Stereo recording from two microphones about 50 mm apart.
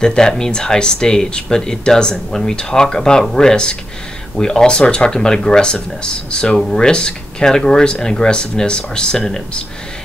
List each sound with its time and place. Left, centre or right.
0.0 s speech: centre